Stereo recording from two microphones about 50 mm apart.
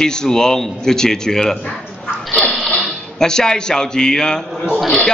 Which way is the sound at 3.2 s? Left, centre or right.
Centre.